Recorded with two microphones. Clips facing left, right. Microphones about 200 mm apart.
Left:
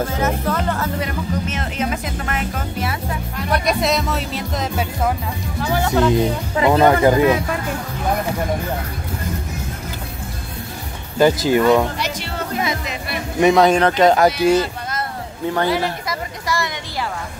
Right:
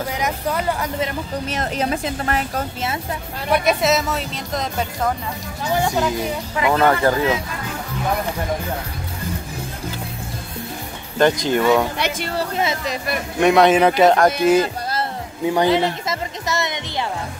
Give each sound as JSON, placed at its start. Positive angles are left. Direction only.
{"t": 0.1, "sound": "music", "side_deg": -15}
{"t": 1.5, "sound": "a woman's voice", "side_deg": -35}
{"t": 3.5, "sound": "speech", "side_deg": -5}
{"t": 5.8, "sound": "speech", "side_deg": -25}
{"t": 6.1, "sound": "speech", "side_deg": 30}
{"t": 6.8, "sound": "speech", "side_deg": 15}
{"t": 11.1, "sound": "speech", "side_deg": 5}
{"t": 12.4, "sound": "music", "side_deg": -30}
{"t": 13.4, "sound": "speech", "side_deg": 0}
{"t": 14.1, "sound": "speech", "side_deg": 5}
{"t": 15.4, "sound": "a sound", "side_deg": -15}